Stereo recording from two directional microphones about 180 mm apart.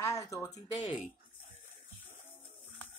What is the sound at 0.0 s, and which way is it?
Speech, 15° left (ahead or behind).